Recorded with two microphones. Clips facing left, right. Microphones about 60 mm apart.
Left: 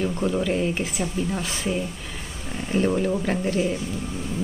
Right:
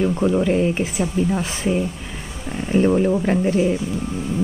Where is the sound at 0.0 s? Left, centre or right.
Centre.